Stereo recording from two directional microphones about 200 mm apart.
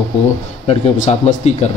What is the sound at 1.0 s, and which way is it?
Speech, 35° left (ahead or behind).